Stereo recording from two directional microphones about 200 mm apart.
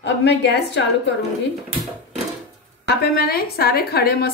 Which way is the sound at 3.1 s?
50° left (ahead or behind).